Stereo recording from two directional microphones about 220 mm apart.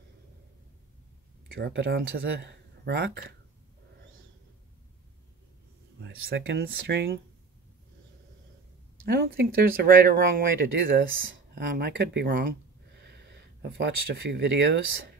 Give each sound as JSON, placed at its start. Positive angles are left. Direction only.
{"t": 1.5, "sound": "speech", "side_deg": -55}
{"t": 6.0, "sound": "speech", "side_deg": -55}
{"t": 9.0, "sound": "speech", "side_deg": -45}